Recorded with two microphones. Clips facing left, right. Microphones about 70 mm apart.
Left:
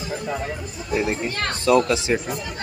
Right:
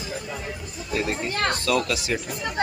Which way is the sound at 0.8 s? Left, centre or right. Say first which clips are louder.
Left 3 dB; centre.